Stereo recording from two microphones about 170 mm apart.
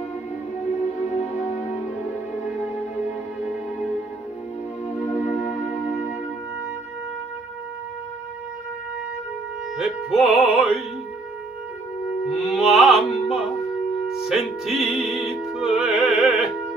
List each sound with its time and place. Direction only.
5.1 s music: 40° left (ahead or behind)
9.8 s music: 5° right (ahead or behind)
12.4 s music: centre (ahead or behind)